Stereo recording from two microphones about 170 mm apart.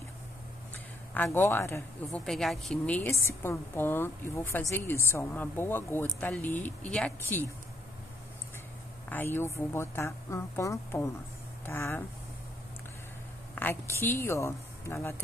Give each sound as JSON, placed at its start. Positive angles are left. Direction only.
{"t": 1.1, "sound": "a woman's voice", "side_deg": 10}
{"t": 2.0, "sound": "a woman's voice", "side_deg": 0}
{"t": 9.1, "sound": "a woman's voice", "side_deg": 10}
{"t": 13.6, "sound": "a woman's voice", "side_deg": 15}